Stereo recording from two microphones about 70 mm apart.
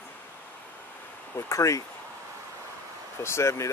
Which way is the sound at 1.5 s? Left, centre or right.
Left.